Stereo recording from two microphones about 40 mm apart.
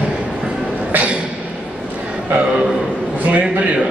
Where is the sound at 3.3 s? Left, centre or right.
Right.